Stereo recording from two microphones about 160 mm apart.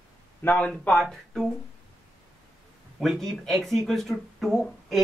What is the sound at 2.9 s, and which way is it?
Speech, centre (ahead or behind).